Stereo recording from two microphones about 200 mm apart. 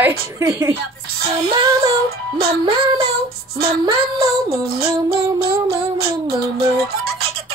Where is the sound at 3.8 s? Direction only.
15° right (ahead or behind).